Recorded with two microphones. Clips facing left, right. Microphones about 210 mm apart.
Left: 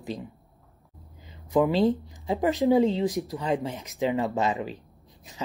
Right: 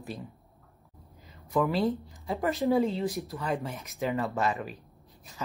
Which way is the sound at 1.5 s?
20° left (ahead or behind).